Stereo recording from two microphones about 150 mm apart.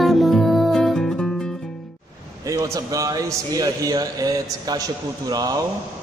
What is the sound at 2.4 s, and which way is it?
A man's voice, 20° right (ahead or behind).